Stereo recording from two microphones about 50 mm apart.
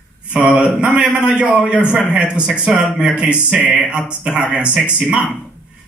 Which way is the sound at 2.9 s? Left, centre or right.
Centre.